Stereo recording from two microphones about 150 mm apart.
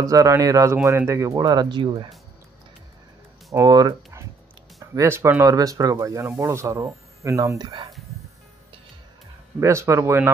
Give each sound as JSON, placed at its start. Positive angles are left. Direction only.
{"t": 0.0, "sound": "speech", "side_deg": -20}
{"t": 3.5, "sound": "speech", "side_deg": -25}
{"t": 9.6, "sound": "speech", "side_deg": -20}